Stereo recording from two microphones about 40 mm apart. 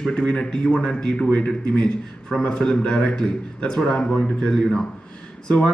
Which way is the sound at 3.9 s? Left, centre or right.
Left.